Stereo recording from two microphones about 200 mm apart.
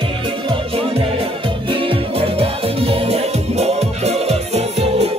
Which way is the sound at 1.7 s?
25° right (ahead or behind).